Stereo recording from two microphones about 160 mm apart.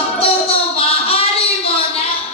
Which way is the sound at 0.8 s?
40° left (ahead or behind).